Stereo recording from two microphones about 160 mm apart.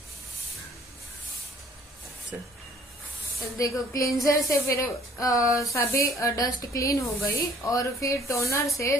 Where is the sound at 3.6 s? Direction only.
20° left (ahead or behind).